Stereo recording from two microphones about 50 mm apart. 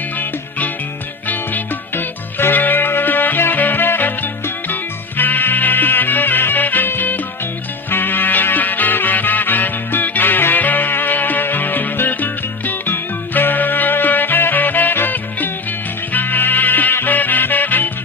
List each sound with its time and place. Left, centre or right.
1.3 s music: left